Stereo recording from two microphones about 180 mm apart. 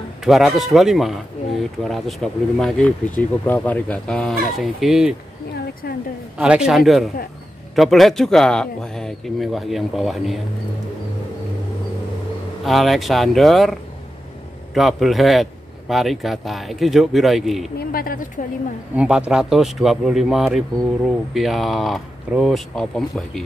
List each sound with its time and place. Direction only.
0.2 s speech: centre (ahead or behind)
6.3 s speech: 5° right (ahead or behind)
12.6 s speech: centre (ahead or behind)
17.7 s speech: 55° left (ahead or behind)
18.9 s speech: 5° right (ahead or behind)